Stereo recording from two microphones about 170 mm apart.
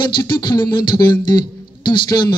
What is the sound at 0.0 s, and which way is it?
Speech, 25° left (ahead or behind).